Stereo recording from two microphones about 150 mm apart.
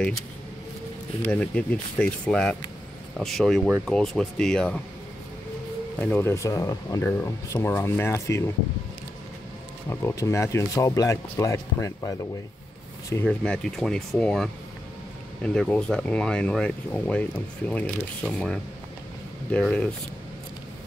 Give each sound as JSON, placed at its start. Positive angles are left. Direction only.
{"t": 1.2, "sound": "speech", "side_deg": 10}
{"t": 5.9, "sound": "speech", "side_deg": 10}
{"t": 9.8, "sound": "speech", "side_deg": 20}
{"t": 13.1, "sound": "speech", "side_deg": 10}